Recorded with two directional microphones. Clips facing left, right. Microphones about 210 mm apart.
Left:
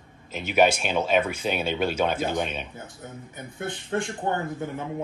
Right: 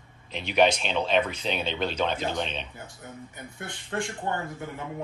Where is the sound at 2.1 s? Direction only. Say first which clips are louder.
Left 3 dB; 50° left (ahead or behind).